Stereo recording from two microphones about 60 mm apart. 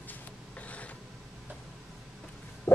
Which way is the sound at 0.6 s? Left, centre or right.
Left.